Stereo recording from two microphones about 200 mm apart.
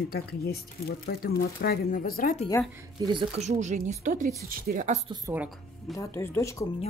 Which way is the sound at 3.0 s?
25° right (ahead or behind).